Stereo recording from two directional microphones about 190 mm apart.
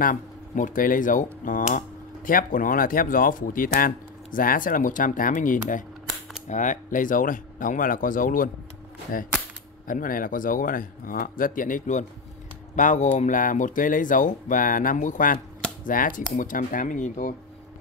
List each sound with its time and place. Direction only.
0.0 s speech: 45° left (ahead or behind)